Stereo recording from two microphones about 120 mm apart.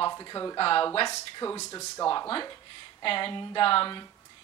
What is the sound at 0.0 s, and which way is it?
Speech, 35° left (ahead or behind).